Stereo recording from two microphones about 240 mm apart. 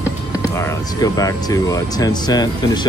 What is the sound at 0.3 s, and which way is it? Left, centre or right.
Speech, centre.